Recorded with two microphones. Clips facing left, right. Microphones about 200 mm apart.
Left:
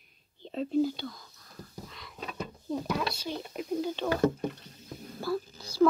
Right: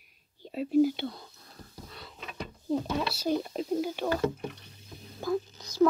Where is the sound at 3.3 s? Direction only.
45° right (ahead or behind).